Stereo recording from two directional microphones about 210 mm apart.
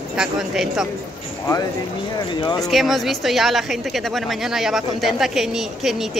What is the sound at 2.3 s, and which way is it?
Speech, 20° left (ahead or behind).